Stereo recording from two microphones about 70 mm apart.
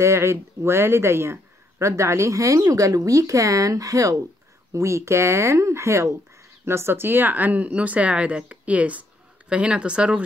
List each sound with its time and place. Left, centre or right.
0.0 s speech: right; by 10.2 s centre